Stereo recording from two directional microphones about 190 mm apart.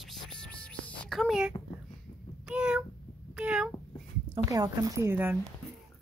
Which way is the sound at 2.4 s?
5° right (ahead or behind).